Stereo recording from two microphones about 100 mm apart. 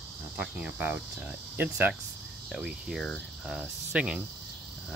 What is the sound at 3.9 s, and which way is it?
Speech, 10° right (ahead or behind).